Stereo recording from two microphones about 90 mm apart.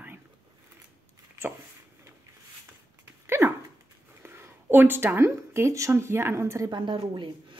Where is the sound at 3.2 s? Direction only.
30° right (ahead or behind).